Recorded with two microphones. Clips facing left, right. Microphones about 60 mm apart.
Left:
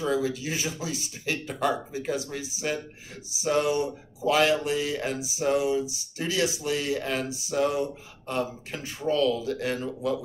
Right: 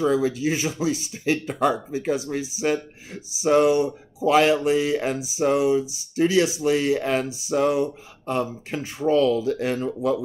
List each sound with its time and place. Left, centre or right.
0.0 s speech: right